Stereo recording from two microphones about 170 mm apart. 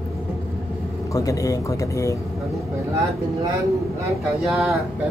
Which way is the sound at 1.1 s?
20° left (ahead or behind).